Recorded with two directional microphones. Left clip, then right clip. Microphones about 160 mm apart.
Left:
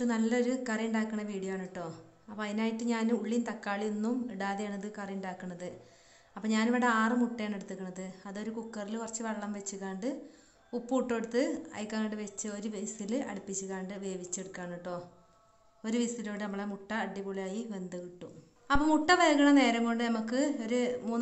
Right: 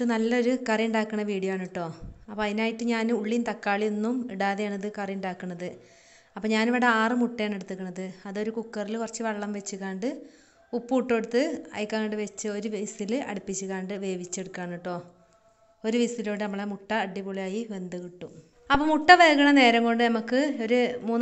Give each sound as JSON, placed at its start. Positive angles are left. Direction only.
{"t": 0.0, "sound": "a woman's voice", "side_deg": -30}